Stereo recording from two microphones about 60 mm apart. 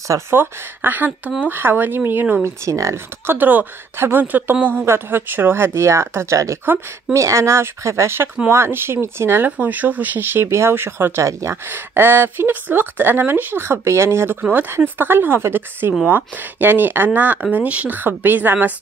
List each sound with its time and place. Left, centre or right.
0.3 s speech: right
2.4 s speech: right
3.3 s speech: right
5.7 s speech: right
6.6 s speech: right
7.2 s speech: right